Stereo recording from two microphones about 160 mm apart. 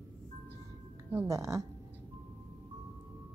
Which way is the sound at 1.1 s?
15° right (ahead or behind).